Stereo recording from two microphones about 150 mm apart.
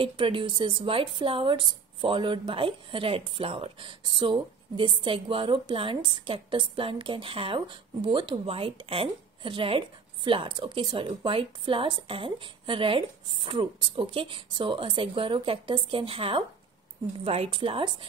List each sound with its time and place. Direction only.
0.0 s a woman's voice: 35° right (ahead or behind)